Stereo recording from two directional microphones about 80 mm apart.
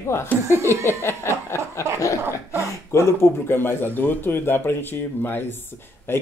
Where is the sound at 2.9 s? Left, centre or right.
Left.